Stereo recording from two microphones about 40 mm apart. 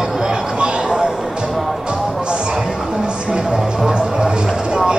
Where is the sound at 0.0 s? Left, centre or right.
Right.